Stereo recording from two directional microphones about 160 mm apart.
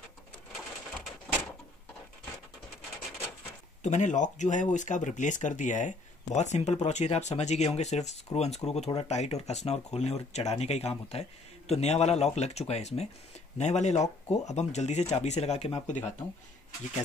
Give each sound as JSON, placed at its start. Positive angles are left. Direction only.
{"t": 3.8, "sound": "speech", "side_deg": 50}